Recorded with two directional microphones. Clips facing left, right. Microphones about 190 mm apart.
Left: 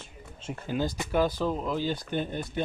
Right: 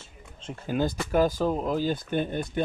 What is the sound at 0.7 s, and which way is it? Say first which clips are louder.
Speech: right 3 dB; 50° right (ahead or behind).